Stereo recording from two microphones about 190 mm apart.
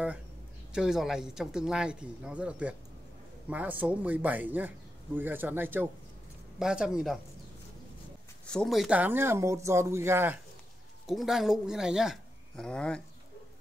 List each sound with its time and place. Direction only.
0.7 s a man's voice: centre (ahead or behind)
8.5 s a man's voice: centre (ahead or behind)
11.1 s speech: centre (ahead or behind)